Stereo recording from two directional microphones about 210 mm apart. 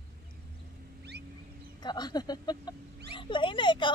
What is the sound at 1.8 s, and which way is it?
Speech, 20° left (ahead or behind).